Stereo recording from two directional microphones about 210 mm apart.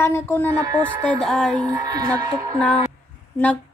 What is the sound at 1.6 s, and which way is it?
Speech, 20° right (ahead or behind).